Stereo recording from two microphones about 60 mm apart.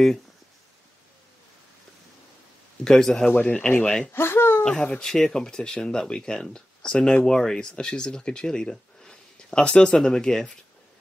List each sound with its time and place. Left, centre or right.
2.8 s speech: centre
3.3 s speech: left
3.8 s speech: centre
4.1 s speech: left
4.6 s speech: centre